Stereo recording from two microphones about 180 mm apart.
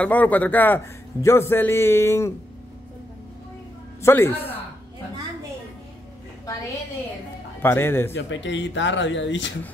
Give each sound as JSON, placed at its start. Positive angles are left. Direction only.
{"t": 0.0, "sound": "a man's voice", "side_deg": 10}
{"t": 4.0, "sound": "a man's voice", "side_deg": 15}
{"t": 7.6, "sound": "a man's voice", "side_deg": 15}
{"t": 8.1, "sound": "speech", "side_deg": 85}